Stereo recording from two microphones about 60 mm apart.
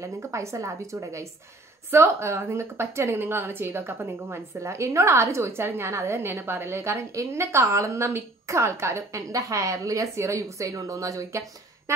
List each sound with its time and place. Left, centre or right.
0.0 s a woman's voice: right
1.9 s a woman's voice: right
4.6 s a woman's voice: right
9.3 s a woman's voice: right